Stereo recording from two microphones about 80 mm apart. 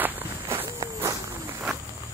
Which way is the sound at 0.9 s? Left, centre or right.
Right.